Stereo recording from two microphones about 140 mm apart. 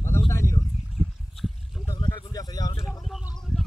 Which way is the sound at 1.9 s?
30° left (ahead or behind).